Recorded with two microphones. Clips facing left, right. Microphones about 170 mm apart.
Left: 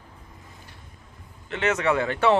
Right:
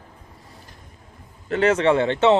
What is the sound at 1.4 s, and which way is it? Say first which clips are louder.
Speech: right 6 dB; 35° right (ahead or behind).